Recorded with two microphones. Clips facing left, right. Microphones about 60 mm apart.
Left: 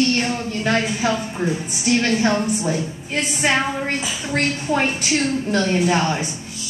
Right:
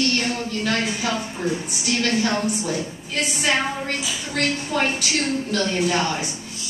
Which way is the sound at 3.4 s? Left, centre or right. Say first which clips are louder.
Left 3 dB; left.